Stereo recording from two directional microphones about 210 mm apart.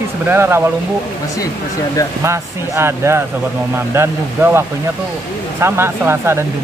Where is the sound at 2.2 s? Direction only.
10° right (ahead or behind).